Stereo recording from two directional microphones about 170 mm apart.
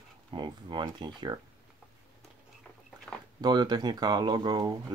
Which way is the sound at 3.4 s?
25° right (ahead or behind).